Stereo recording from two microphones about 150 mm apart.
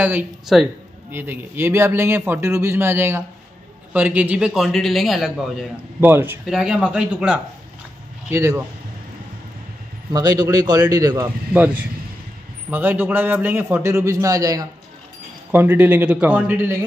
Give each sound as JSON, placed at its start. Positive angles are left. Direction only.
{"t": 0.0, "sound": "a man's voice", "side_deg": -10}
{"t": 5.9, "sound": "a man's voice", "side_deg": -15}
{"t": 8.3, "sound": "a man's voice", "side_deg": -15}
{"t": 10.1, "sound": "a man's voice", "side_deg": -25}
{"t": 11.5, "sound": "a man's voice", "side_deg": -10}
{"t": 15.5, "sound": "a man's voice", "side_deg": -15}